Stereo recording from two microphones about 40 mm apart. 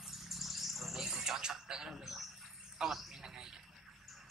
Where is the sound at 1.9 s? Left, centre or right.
Centre.